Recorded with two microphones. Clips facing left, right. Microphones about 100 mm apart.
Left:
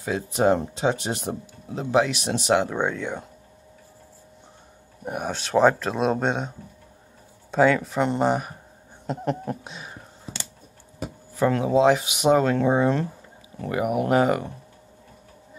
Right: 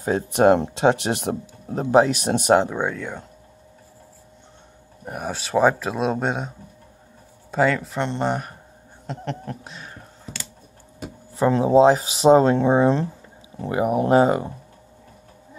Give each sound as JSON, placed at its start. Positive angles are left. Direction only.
{"t": 0.3, "sound": "speech", "side_deg": -60}
{"t": 1.7, "sound": "speech", "side_deg": -45}
{"t": 2.7, "sound": "speech", "side_deg": 0}
{"t": 5.0, "sound": "speech", "side_deg": 0}
{"t": 7.5, "sound": "speech", "side_deg": 0}
{"t": 9.0, "sound": "a sound", "side_deg": 10}
{"t": 11.3, "sound": "speech", "side_deg": -25}